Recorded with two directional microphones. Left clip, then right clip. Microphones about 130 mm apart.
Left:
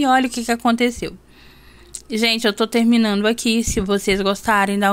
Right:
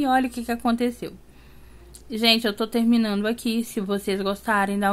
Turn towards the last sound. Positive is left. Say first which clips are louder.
# left 5 dB
turn(degrees=25)  # may be behind; listen again after turning